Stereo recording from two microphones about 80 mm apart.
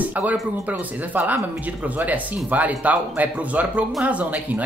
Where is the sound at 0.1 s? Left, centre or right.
Centre.